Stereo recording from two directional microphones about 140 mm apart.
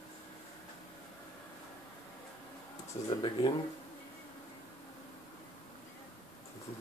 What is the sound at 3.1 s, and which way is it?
Speech, 35° left (ahead or behind).